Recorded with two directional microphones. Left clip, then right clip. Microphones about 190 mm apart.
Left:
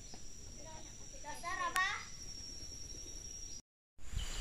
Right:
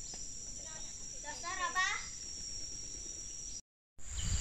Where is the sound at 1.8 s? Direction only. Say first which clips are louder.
Right 2 dB; 50° right (ahead or behind).